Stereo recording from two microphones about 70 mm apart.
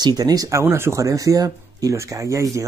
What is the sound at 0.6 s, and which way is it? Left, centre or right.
Speech, right.